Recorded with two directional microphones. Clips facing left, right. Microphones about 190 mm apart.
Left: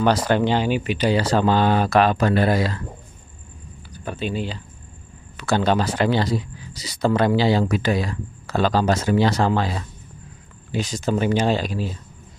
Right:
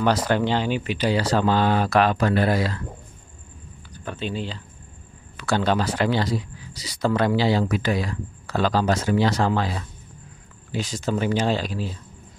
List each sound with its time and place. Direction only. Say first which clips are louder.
0.0 s speech: left 2 dB; 25° left (ahead or behind)
3.9 s speech: left 3 dB; 10° left (ahead or behind); by 9.8 s 30° left (ahead or behind)
10.7 s speech: left 3 dB; 20° left (ahead or behind)